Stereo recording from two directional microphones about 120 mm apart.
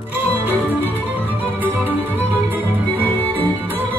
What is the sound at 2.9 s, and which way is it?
Music, 15° left (ahead or behind).